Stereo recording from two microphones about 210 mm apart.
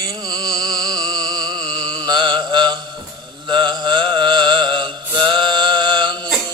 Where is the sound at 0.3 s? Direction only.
20° right (ahead or behind).